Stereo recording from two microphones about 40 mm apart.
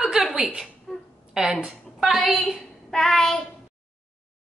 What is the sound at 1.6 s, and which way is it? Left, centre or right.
Speech, centre.